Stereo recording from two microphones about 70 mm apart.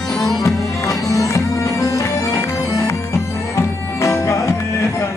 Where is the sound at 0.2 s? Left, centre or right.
Left.